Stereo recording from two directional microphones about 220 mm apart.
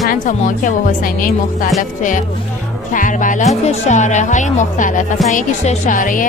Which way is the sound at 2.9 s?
35° left (ahead or behind).